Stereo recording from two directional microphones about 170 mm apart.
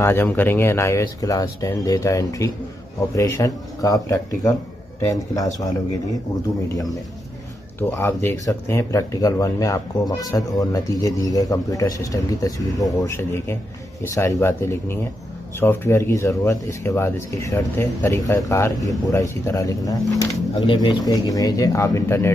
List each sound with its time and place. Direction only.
0.0 s speech: 15° left (ahead or behind)
7.9 s speech: 15° left (ahead or behind)